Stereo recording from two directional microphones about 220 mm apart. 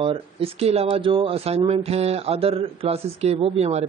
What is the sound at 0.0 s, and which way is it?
Speech, 25° right (ahead or behind).